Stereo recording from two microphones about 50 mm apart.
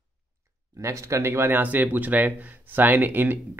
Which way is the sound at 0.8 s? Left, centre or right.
Right.